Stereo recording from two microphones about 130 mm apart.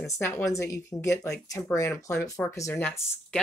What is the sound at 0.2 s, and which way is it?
Speech, 15° left (ahead or behind).